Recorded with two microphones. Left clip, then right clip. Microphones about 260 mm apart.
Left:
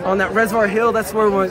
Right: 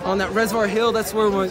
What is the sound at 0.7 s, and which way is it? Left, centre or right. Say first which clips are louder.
Speech: left 3 dB; centre.